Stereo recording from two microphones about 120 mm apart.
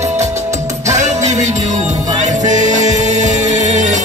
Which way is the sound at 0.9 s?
75° right (ahead or behind).